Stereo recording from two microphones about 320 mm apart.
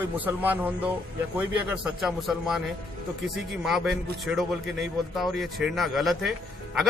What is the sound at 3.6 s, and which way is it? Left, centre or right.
A man's voice, centre.